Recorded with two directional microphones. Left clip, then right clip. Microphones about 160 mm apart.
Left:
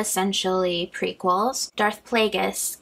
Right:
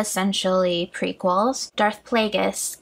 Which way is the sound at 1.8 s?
55° right (ahead or behind).